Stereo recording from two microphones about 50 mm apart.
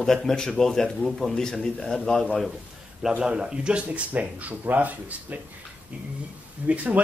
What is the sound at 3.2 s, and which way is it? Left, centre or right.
Speech, centre.